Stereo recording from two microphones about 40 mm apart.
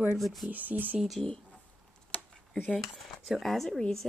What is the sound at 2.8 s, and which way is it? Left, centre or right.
Speech, centre.